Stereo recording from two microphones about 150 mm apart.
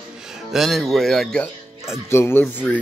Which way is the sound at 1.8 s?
15° left (ahead or behind).